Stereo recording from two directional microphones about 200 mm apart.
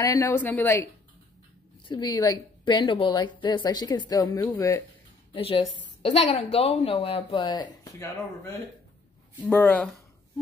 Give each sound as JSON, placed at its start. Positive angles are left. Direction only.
{"t": 0.0, "sound": "speech", "side_deg": 15}
{"t": 1.9, "sound": "a woman's voice", "side_deg": 20}
{"t": 5.3, "sound": "a woman's voice", "side_deg": 30}